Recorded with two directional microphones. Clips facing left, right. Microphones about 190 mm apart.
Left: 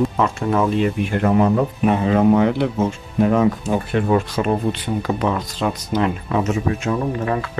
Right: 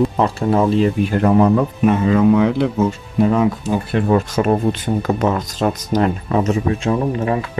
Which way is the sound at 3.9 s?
45° right (ahead or behind).